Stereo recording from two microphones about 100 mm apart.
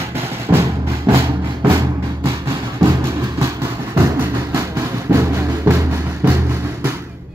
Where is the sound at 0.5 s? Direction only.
30° right (ahead or behind).